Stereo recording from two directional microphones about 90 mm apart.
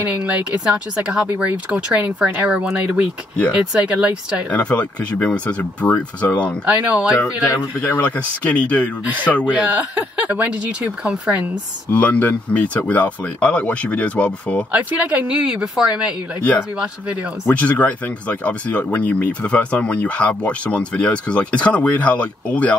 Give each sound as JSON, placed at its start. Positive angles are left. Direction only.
{"t": 0.0, "sound": "speech", "side_deg": -15}
{"t": 4.5, "sound": "speech", "side_deg": 15}
{"t": 6.6, "sound": "speech", "side_deg": -15}
{"t": 7.8, "sound": "speech", "side_deg": 15}
{"t": 9.5, "sound": "speech", "side_deg": -15}
{"t": 11.9, "sound": "speech", "side_deg": 15}
{"t": 14.7, "sound": "speech", "side_deg": -15}
{"t": 17.5, "sound": "speech", "side_deg": 15}